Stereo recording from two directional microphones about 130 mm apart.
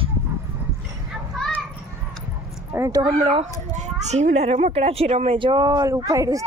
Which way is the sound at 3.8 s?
65° right (ahead or behind).